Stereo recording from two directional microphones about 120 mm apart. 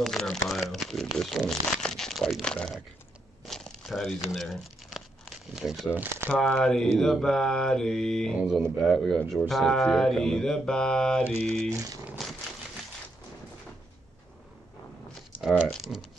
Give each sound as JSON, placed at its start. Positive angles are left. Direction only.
{"t": 0.0, "sound": "speech", "side_deg": 5}
{"t": 3.4, "sound": "a sound", "side_deg": 5}
{"t": 4.3, "sound": "crumpling", "side_deg": 0}
{"t": 5.9, "sound": "speech", "side_deg": -15}
{"t": 6.3, "sound": "speech", "side_deg": 5}
{"t": 11.7, "sound": "speech", "side_deg": -25}
{"t": 12.2, "sound": "a sound", "side_deg": 0}
{"t": 15.7, "sound": "speech", "side_deg": -5}